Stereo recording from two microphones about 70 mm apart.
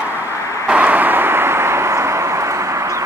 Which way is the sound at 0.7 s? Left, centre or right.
Right.